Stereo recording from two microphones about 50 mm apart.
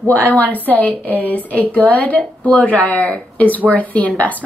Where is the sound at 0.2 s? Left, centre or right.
Left.